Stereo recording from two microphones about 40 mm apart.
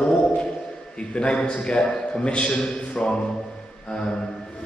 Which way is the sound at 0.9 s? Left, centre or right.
Left.